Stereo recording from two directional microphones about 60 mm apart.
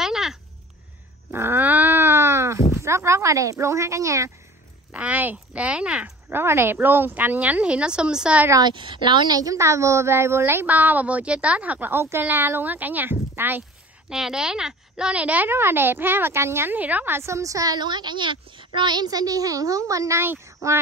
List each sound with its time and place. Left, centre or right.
0.0 s a sound: centre
1.3 s a sound: right
4.9 s speech: right
6.3 s speech: right; by 8.4 s centre
9.3 s a woman's voice: right
9.6 s a woman's voice: right
11.9 s a woman's voice: right
14.0 s speech: centre; by 15.5 s right
15.5 s a woman's voice: right
16.7 s speech: right
17.1 s a woman's voice: right
19.0 s a child's voice: right